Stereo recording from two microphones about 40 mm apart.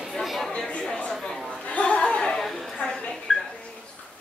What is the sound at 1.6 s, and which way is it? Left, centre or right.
Chatter, left.